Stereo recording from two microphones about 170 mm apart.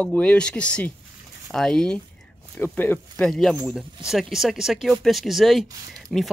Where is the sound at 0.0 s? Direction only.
5° left (ahead or behind).